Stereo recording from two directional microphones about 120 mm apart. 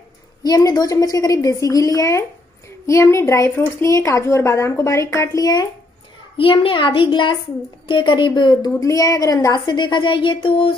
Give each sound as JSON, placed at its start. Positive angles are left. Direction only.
{"t": 0.4, "sound": "a woman's voice", "side_deg": 35}
{"t": 6.3, "sound": "a child's voice", "side_deg": 45}
{"t": 8.7, "sound": "speech", "side_deg": 30}